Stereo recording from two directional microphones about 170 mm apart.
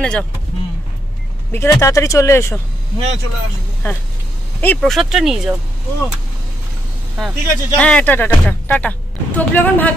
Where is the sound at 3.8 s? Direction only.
10° left (ahead or behind).